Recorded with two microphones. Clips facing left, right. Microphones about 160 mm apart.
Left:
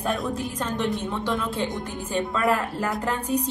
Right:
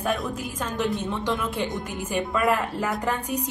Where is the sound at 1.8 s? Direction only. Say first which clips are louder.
Even; 10° right (ahead or behind).